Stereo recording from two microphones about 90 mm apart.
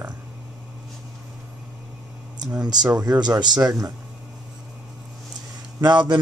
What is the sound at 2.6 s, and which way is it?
Speech, 50° right (ahead or behind).